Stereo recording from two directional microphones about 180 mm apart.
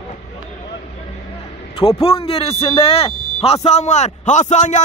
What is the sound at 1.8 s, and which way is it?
A man's voice, 30° left (ahead or behind).